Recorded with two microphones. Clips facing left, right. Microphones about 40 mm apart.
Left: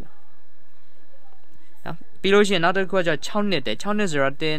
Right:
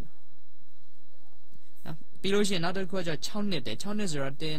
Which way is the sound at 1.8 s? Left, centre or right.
Left.